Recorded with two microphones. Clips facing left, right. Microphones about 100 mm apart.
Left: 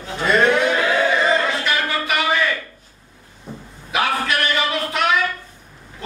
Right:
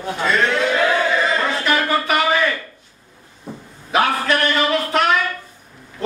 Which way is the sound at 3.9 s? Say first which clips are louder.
Right 3 dB; 40° right (ahead or behind).